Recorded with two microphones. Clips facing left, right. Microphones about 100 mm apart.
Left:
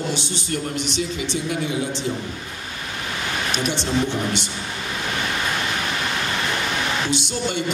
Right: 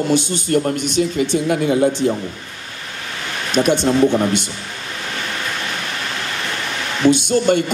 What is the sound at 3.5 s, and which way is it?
A man's voice, 50° right (ahead or behind).